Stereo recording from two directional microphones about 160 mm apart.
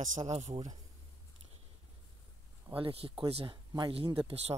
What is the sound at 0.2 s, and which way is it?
Speech, 40° right (ahead or behind).